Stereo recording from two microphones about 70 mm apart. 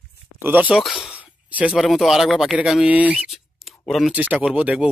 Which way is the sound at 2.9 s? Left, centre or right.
Right.